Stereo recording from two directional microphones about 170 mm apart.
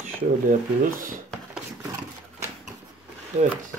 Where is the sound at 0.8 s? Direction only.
50° right (ahead or behind).